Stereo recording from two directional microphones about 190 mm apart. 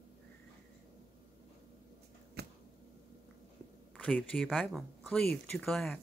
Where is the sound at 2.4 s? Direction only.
60° right (ahead or behind).